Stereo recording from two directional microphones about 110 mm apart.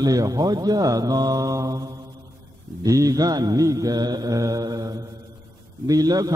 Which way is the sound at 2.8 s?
30° right (ahead or behind).